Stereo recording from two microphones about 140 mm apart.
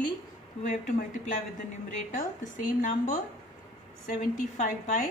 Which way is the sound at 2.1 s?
70° left (ahead or behind).